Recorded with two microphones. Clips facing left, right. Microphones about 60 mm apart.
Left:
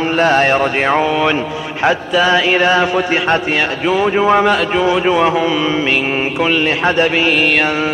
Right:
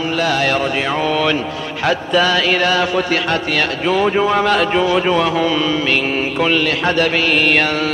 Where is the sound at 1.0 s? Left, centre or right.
Centre.